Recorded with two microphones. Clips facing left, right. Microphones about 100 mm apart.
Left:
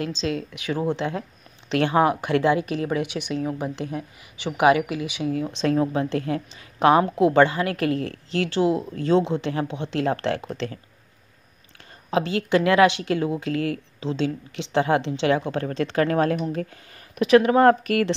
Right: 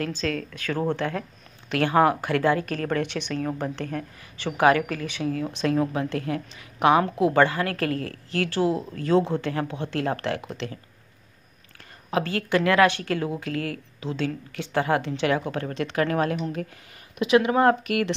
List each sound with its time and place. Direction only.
0.0 s speech: 20° left (ahead or behind)
5.3 s speech: 25° left (ahead or behind)
12.1 s speech: 20° left (ahead or behind)
17.6 s speech: 40° left (ahead or behind)